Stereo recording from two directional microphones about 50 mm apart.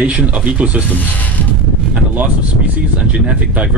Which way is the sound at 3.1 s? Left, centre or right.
Right.